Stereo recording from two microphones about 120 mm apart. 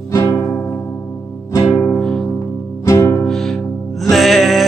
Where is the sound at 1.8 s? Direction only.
10° left (ahead or behind).